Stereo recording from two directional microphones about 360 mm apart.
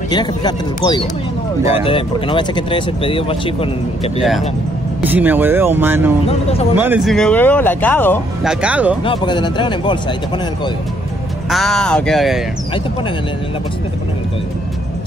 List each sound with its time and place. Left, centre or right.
0.1 s speech: centre
5.0 s speech: centre
6.2 s speech: centre
6.8 s speech: centre
9.0 s speech: centre
11.5 s speech: centre